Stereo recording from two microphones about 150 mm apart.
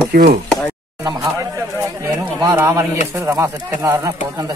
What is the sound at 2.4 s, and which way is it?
Speech, 20° right (ahead or behind).